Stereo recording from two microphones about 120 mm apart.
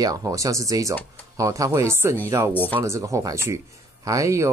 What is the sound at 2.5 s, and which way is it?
Speech, 15° left (ahead or behind).